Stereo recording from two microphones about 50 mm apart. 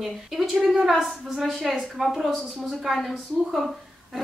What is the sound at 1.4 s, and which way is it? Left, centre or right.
A woman's voice, centre.